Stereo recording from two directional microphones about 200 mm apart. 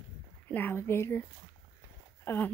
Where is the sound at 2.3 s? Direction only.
10° left (ahead or behind).